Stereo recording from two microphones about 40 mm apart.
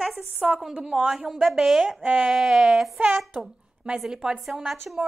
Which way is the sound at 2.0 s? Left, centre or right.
Right.